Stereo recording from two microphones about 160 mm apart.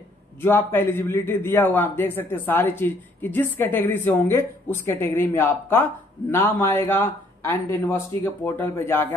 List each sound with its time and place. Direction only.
0.4 s a man's voice: 15° left (ahead or behind)